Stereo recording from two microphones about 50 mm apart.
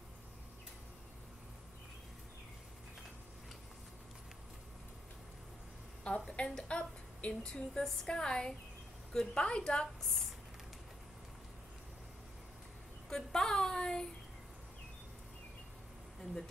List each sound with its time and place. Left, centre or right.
6.0 s a woman's voice: centre
7.7 s a woman's voice: centre
13.1 s a sound: centre